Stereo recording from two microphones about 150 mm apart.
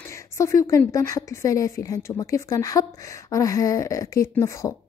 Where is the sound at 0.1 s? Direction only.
20° left (ahead or behind).